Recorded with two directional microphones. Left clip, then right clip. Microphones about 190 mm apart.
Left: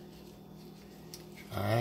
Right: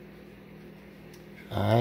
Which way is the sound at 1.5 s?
45° right (ahead or behind).